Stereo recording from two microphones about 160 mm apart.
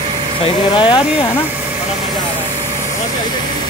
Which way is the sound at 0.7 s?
30° left (ahead or behind).